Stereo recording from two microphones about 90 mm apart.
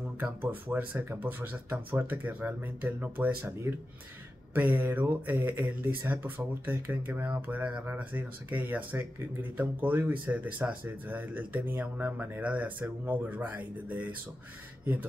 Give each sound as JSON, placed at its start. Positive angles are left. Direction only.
{"t": 0.2, "sound": "speech", "side_deg": -20}